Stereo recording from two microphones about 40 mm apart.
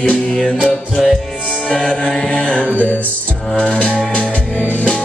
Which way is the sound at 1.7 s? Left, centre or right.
Left.